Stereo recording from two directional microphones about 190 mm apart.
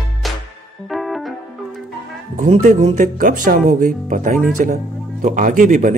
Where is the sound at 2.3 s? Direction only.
40° right (ahead or behind).